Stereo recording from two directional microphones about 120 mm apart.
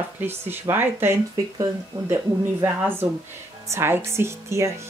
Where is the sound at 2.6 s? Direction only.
20° right (ahead or behind).